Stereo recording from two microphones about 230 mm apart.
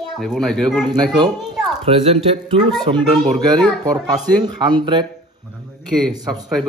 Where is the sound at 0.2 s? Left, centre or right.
Centre.